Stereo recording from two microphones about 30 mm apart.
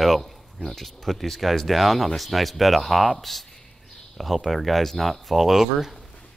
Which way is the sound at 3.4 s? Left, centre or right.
Centre.